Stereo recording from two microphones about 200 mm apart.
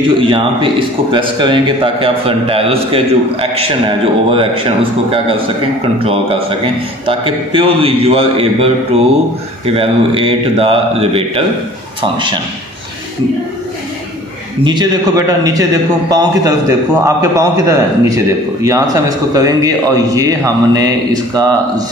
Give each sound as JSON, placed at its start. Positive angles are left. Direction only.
{"t": 0.2, "sound": "a man's voice", "side_deg": -25}
{"t": 6.6, "sound": "a man's voice", "side_deg": -25}
{"t": 14.6, "sound": "a man's voice", "side_deg": -20}